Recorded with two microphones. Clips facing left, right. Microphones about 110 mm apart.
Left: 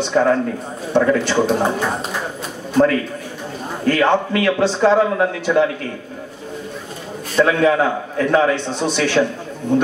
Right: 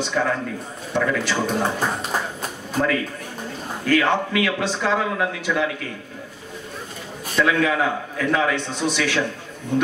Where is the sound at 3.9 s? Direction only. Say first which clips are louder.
Left 4 dB; 35° left (ahead or behind).